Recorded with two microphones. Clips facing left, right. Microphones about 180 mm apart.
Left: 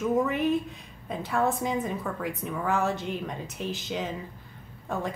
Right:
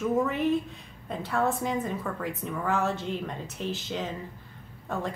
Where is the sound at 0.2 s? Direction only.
15° left (ahead or behind).